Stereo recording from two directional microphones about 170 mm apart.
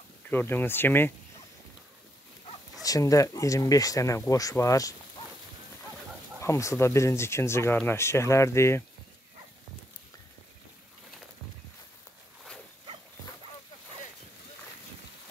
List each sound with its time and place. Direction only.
0.3 s speech: 10° left (ahead or behind)
2.8 s speech: 20° left (ahead or behind)
6.4 s speech: 15° left (ahead or behind)